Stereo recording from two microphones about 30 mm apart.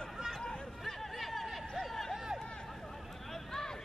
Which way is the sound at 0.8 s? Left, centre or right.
Centre.